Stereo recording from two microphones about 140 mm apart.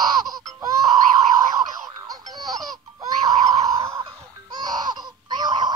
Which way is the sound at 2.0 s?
25° right (ahead or behind).